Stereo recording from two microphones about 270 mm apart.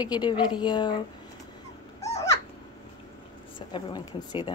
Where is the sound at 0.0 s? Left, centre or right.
Centre.